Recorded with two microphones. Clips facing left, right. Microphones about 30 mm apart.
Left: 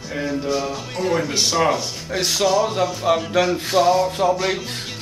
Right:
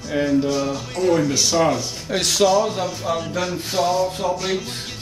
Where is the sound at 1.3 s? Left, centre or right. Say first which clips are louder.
Right 1 dB; left.